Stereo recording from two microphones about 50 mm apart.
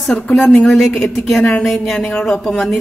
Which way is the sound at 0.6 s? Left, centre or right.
Centre.